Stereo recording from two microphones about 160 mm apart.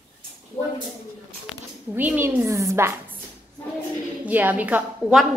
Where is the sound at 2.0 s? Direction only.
10° right (ahead or behind).